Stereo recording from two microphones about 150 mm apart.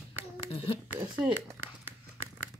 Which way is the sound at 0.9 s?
10° right (ahead or behind).